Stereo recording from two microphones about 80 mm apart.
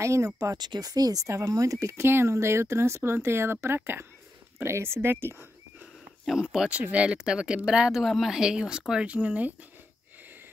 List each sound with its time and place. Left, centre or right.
0.0 s speech: right
0.6 s speech: right
6.7 s speech: centre